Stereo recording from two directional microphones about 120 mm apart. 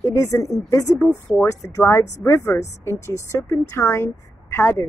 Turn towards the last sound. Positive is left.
turn(degrees=20)  # may be behind; listen again after turning